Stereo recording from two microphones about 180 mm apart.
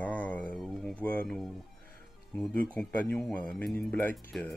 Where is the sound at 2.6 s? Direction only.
10° left (ahead or behind).